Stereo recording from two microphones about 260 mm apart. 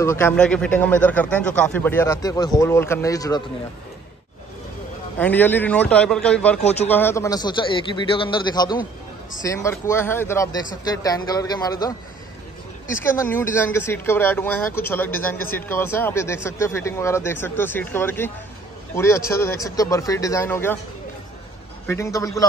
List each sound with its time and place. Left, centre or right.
0.0 s speech: centre
5.2 s a man's voice: centre
12.9 s speech: centre
15.0 s a man's voice: left
15.5 s speech: centre
21.8 s speech: centre